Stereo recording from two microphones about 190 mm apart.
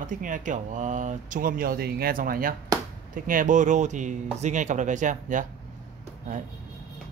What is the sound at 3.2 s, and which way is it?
Speech, 45° right (ahead or behind).